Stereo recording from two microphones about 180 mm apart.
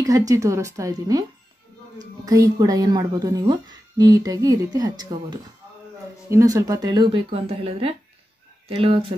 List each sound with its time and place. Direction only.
0.0 s a woman's voice: 20° right (ahead or behind)
2.2 s a woman's voice: 20° right (ahead or behind)